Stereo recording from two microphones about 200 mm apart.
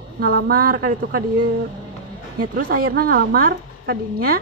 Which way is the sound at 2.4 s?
45° right (ahead or behind).